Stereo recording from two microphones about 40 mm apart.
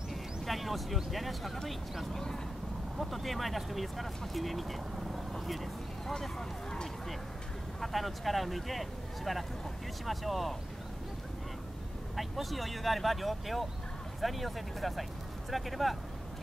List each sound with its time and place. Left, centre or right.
0.1 s speech: centre
6.3 s speech: centre
7.8 s speech: centre
12.2 s speech: centre